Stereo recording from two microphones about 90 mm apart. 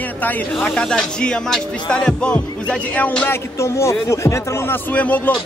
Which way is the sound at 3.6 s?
30° left (ahead or behind).